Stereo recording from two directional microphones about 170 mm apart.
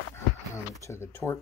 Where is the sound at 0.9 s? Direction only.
15° left (ahead or behind).